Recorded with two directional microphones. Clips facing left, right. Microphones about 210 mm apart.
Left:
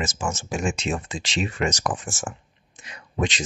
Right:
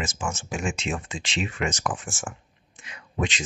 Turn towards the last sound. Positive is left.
turn(degrees=35)  # may be behind; listen again after turning